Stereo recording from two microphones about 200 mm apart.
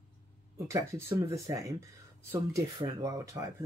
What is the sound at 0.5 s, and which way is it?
Speech, 15° right (ahead or behind).